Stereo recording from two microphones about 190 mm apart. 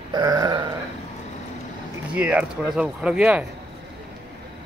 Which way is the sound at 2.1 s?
10° right (ahead or behind).